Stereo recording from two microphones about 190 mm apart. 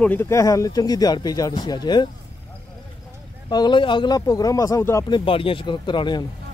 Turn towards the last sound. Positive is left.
turn(degrees=25)  # may be behind; listen again after turning